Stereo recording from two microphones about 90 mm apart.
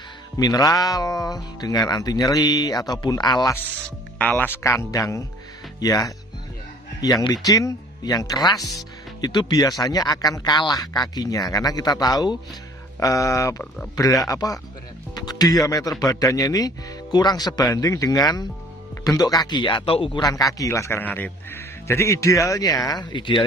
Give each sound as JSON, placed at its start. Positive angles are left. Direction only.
{"t": 0.4, "sound": "speech", "side_deg": 45}
{"t": 4.2, "sound": "speech", "side_deg": 20}
{"t": 20.2, "sound": "speech", "side_deg": 45}
{"t": 21.0, "sound": "speech", "side_deg": 20}